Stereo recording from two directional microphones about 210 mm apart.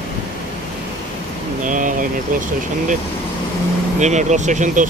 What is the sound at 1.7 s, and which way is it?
Speech, 40° right (ahead or behind).